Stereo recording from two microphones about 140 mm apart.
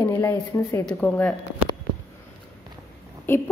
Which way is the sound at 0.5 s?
25° left (ahead or behind).